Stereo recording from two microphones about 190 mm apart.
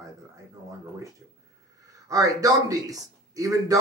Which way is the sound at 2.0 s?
15° right (ahead or behind).